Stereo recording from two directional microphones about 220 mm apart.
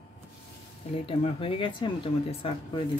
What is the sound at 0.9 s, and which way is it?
Speech, 25° left (ahead or behind).